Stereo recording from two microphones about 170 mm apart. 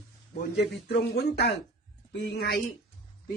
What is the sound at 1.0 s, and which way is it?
Speech, 70° left (ahead or behind).